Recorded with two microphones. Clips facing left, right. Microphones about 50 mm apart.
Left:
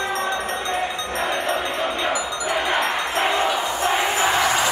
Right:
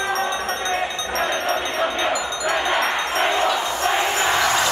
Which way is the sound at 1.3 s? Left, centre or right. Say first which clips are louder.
Even; centre.